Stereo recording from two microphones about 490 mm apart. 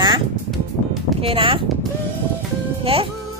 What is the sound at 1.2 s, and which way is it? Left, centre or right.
Speech, centre.